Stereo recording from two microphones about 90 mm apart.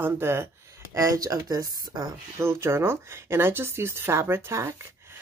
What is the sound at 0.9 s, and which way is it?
Speech, 40° right (ahead or behind).